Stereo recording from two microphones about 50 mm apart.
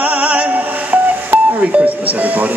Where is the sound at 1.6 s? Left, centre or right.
Right.